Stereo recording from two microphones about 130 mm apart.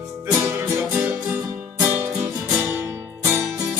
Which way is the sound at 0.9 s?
15° right (ahead or behind).